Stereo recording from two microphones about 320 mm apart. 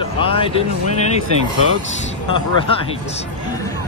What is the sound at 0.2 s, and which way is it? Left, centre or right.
Speech, centre.